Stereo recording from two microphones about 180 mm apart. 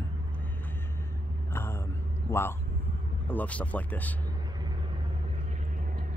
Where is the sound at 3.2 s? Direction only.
10° left (ahead or behind).